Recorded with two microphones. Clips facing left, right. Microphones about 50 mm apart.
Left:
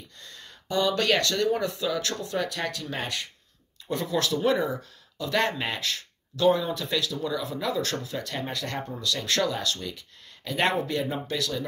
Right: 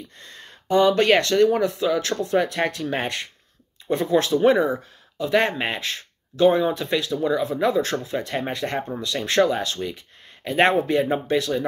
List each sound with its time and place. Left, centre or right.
0.2 s speech: right
1.4 s speech: centre
1.8 s speech: right
3.8 s speech: right